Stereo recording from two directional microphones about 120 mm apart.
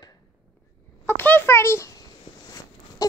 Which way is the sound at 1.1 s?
15° left (ahead or behind).